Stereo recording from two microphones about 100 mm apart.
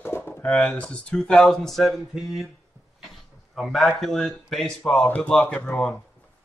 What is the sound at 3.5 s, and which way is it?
Speech, centre (ahead or behind).